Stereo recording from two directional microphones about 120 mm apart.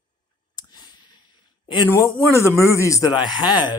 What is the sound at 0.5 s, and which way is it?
Clicking, 35° left (ahead or behind).